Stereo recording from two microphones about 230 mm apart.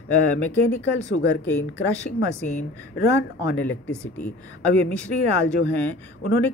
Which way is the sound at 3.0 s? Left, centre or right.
Left.